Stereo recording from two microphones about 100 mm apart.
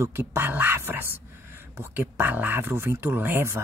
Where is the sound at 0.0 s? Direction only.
25° right (ahead or behind).